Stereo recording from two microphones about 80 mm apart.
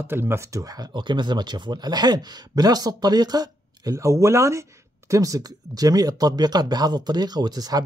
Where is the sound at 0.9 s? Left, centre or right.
Right.